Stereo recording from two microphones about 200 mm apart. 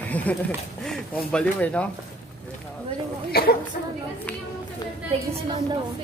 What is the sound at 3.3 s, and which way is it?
Speech, 50° left (ahead or behind).